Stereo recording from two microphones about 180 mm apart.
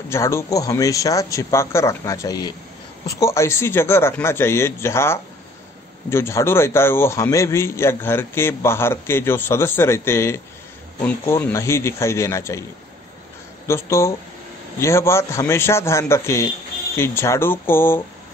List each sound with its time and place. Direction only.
0.1 s a man's voice: 15° left (ahead or behind)
13.7 s a man's voice: 15° left (ahead or behind)